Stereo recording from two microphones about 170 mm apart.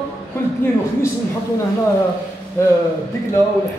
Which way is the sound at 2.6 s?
15° left (ahead or behind).